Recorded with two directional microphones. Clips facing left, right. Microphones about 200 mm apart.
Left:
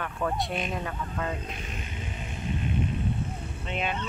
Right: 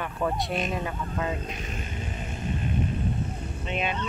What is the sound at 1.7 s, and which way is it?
Music, 45° right (ahead or behind).